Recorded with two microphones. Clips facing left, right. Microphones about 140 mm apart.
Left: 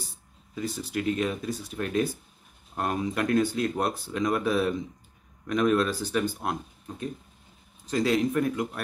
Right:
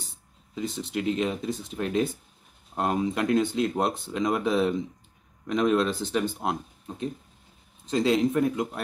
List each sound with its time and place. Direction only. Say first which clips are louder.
0.6 s speech: right 1 dB; 20° right (ahead or behind)
7.8 s speech: right 2 dB; 25° right (ahead or behind)